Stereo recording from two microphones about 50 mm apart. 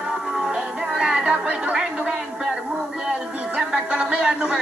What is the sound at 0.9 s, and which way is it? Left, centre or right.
Chatter, centre.